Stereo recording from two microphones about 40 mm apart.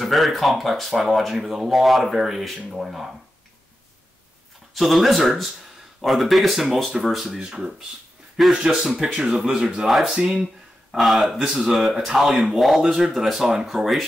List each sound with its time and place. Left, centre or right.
0.0 s speech: centre
4.7 s speech: centre
8.5 s speech: centre
11.0 s speech: centre
12.8 s speech: centre